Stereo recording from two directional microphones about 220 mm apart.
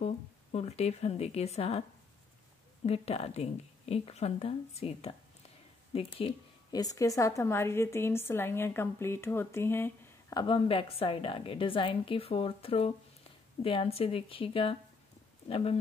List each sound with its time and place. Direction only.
0.0 s a woman's voice: 30° left (ahead or behind)
2.9 s a woman's voice: 25° left (ahead or behind); by 10.4 s 10° left (ahead or behind)
10.4 s a woman's voice: 25° left (ahead or behind)